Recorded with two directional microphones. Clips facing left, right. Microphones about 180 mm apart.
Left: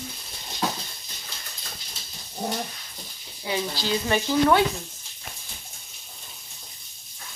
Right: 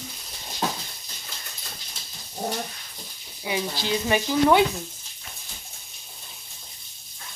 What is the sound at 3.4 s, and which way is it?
Speech, 15° right (ahead or behind).